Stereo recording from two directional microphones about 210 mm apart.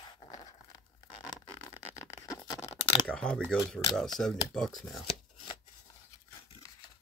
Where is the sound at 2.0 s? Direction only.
15° left (ahead or behind).